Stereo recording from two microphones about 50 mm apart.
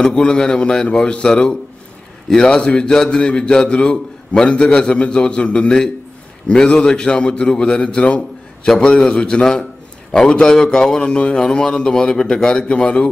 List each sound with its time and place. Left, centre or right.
0.0 s a man's voice: centre
8.6 s a man's voice: centre